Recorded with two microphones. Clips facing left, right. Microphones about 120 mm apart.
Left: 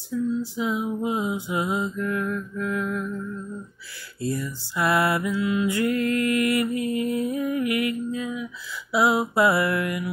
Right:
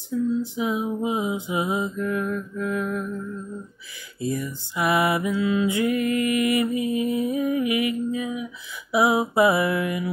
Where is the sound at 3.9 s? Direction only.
20° right (ahead or behind).